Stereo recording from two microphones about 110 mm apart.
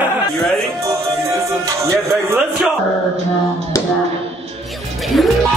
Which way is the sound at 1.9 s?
25° right (ahead or behind).